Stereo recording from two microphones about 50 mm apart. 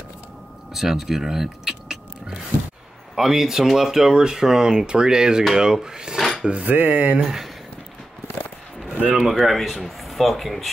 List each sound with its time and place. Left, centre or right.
0.7 s speech: centre
6.1 s dishes: centre
6.6 s speech: right
7.2 s speech: centre
9.1 s speech: centre